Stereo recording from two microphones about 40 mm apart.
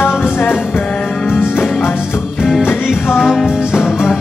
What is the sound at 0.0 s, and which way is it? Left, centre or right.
Music, left.